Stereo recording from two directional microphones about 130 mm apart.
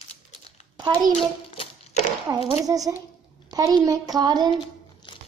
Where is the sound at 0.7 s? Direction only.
35° right (ahead or behind).